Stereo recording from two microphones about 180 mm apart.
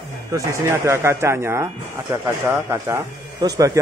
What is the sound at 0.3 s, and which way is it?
A man's voice, 15° right (ahead or behind).